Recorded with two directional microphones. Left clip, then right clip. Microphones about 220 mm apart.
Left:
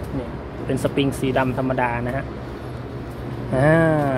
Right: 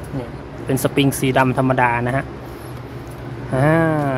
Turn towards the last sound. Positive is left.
turn(degrees=-10)  # may be behind; listen again after turning